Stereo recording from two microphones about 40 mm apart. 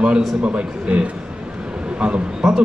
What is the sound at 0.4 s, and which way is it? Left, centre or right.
A man's voice, right.